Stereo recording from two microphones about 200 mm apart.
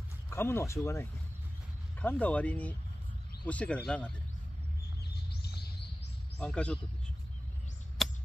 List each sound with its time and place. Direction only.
0.3 s speech: 15° left (ahead or behind)
5.1 s a sound: 55° left (ahead or behind)
6.4 s a man's voice: 5° left (ahead or behind)
8.0 s chop: centre (ahead or behind)